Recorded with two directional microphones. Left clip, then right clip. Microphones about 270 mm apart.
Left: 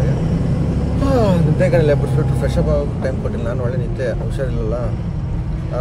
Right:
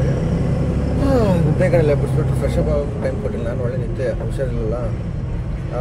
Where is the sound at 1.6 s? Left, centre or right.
Centre.